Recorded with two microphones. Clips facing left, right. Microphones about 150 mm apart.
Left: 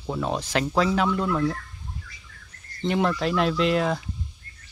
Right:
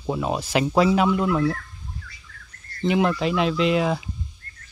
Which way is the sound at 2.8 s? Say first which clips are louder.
Right 3 dB; 5° right (ahead or behind).